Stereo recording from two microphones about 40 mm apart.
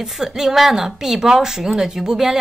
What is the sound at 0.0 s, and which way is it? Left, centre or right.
A woman's voice, centre.